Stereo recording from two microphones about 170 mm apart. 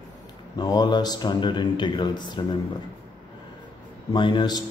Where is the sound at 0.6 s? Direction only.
25° left (ahead or behind).